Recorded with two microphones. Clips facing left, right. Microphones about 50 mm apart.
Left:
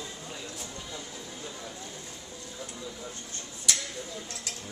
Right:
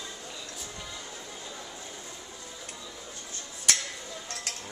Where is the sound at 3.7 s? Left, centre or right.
Right.